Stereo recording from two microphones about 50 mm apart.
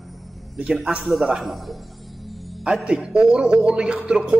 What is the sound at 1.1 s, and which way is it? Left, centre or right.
Speech, centre.